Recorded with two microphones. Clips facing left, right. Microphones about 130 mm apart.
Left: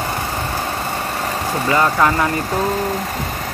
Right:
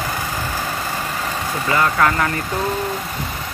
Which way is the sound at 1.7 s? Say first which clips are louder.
Left 2 dB; 25° left (ahead or behind).